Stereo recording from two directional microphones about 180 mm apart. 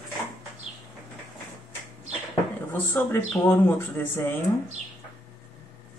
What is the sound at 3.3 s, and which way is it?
Speech, 10° left (ahead or behind).